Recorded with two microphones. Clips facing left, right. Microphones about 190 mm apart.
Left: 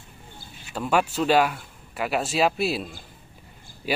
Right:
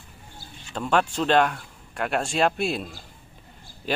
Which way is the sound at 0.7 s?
5° left (ahead or behind).